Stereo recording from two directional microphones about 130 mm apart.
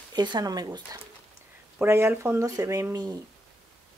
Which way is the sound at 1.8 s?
20° right (ahead or behind).